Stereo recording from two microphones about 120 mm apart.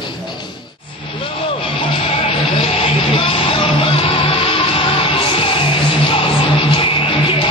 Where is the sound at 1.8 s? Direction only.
45° left (ahead or behind).